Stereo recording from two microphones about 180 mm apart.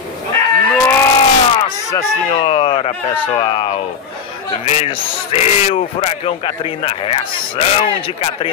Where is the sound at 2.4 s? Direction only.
30° left (ahead or behind).